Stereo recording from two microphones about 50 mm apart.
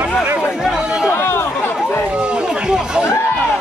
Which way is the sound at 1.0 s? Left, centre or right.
Left.